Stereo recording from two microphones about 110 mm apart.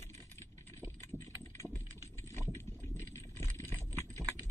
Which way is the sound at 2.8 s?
20° left (ahead or behind).